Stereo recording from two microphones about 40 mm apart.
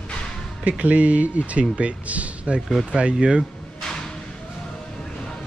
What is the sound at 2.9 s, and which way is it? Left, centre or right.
Speech, centre.